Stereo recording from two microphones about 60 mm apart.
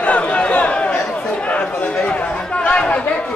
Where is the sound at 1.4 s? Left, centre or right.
Left.